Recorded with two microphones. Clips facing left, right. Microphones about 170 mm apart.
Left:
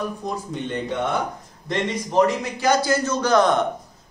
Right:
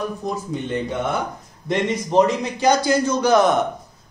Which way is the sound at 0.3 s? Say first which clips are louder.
Right 3 dB; 5° right (ahead or behind).